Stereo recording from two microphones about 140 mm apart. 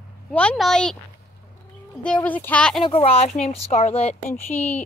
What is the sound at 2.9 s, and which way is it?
Speech, 45° left (ahead or behind).